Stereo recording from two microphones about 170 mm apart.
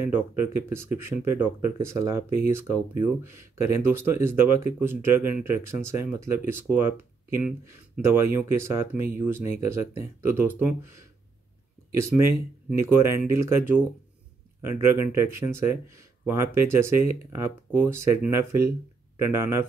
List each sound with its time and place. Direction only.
0.0 s speech: 15° right (ahead or behind)
12.0 s speech: 15° right (ahead or behind)